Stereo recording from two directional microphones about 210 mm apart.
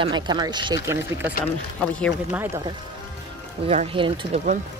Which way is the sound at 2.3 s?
15° right (ahead or behind).